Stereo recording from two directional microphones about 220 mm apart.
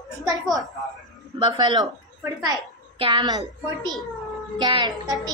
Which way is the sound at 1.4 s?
20° right (ahead or behind).